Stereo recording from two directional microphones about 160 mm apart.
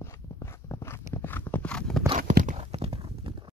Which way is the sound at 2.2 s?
60° right (ahead or behind).